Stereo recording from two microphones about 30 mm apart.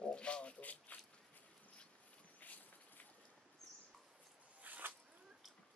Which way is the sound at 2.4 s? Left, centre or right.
Left.